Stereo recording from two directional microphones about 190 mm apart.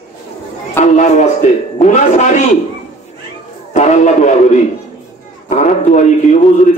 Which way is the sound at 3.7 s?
40° left (ahead or behind).